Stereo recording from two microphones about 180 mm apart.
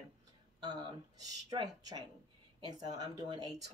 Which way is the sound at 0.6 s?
25° right (ahead or behind).